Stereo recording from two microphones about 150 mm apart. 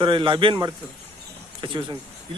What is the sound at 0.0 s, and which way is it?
Speech, 35° right (ahead or behind).